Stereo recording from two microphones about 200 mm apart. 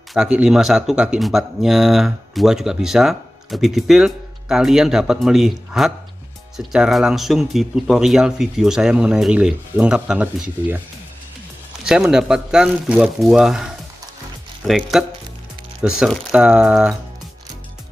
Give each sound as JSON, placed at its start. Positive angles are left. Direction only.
{"t": 0.1, "sound": "speech", "side_deg": -5}
{"t": 11.8, "sound": "speech", "side_deg": -5}